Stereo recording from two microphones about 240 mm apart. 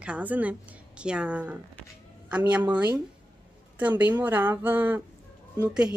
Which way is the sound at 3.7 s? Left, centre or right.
Centre.